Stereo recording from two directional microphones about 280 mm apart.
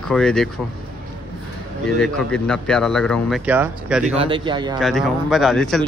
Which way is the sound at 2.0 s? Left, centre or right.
Centre.